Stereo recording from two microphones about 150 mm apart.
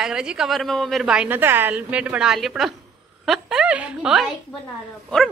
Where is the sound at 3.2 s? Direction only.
5° right (ahead or behind).